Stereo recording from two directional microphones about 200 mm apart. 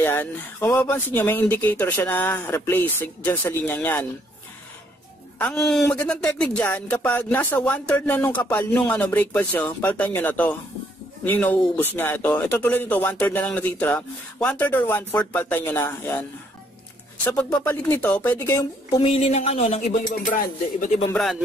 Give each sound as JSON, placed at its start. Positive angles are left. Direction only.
{"t": 0.0, "sound": "speech", "side_deg": 10}
{"t": 5.4, "sound": "speech", "side_deg": 0}
{"t": 18.9, "sound": "speech", "side_deg": 30}
{"t": 21.1, "sound": "speech", "side_deg": 0}